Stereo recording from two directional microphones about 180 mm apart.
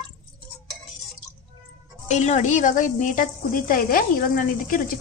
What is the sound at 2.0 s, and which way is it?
A woman's voice, 40° left (ahead or behind).